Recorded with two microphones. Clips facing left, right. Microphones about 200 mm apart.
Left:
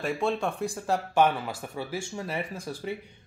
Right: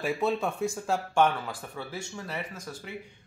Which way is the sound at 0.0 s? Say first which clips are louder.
Even; 5° right (ahead or behind).